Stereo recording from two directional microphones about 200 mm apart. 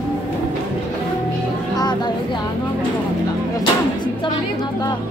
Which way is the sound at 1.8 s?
20° left (ahead or behind).